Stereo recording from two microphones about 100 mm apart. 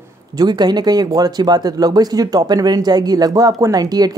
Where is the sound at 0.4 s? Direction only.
45° right (ahead or behind).